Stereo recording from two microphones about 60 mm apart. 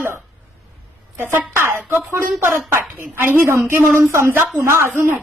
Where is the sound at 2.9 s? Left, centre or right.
Right.